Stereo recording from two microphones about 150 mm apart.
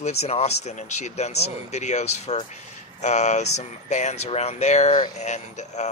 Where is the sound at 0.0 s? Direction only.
45° left (ahead or behind).